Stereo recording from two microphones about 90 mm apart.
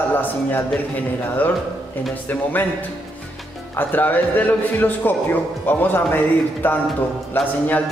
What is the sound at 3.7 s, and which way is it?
A man's voice, 20° left (ahead or behind).